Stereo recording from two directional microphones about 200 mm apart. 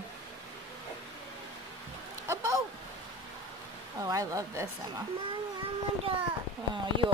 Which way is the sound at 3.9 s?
15° right (ahead or behind).